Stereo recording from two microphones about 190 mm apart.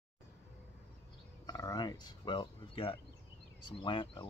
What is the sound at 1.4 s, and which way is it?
Speech, 20° left (ahead or behind).